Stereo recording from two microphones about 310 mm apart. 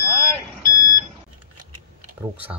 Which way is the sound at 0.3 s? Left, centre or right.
Centre.